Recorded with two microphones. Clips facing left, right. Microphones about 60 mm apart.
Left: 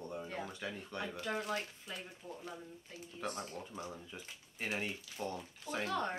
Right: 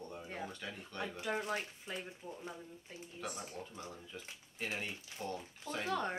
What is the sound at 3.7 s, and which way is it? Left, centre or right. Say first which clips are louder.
Speech: left 2 dB; centre.